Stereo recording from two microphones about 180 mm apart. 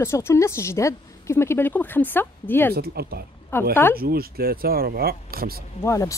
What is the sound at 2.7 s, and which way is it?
Speech, 60° right (ahead or behind).